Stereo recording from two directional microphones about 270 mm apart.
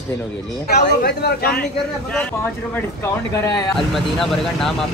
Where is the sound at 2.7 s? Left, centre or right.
Centre.